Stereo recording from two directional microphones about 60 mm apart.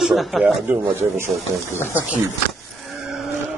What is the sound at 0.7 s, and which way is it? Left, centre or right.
Speech, right.